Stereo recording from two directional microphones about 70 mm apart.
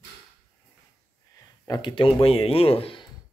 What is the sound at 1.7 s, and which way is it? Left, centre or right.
Speech, left.